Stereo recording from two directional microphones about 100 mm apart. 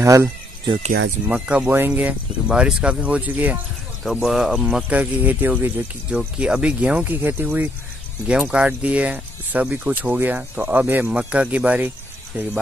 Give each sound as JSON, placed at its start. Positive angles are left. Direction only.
{"t": 0.0, "sound": "speech", "side_deg": -30}
{"t": 1.3, "sound": "speech", "side_deg": -10}
{"t": 4.0, "sound": "speech", "side_deg": 0}